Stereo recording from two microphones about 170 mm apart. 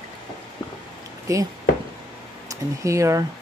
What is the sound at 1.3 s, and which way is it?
Speech, 20° right (ahead or behind).